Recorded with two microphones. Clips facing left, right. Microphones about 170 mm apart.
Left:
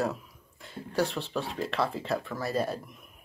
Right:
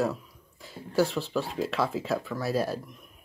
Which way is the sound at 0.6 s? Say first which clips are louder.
Right 3 dB; centre (ahead or behind).